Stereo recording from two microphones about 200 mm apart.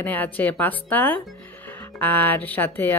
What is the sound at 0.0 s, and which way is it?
A woman's voice, 10° left (ahead or behind).